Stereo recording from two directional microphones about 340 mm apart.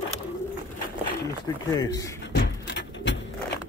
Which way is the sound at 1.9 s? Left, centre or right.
Centre.